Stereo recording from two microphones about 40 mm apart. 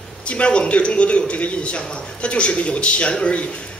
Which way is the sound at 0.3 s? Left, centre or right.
Left.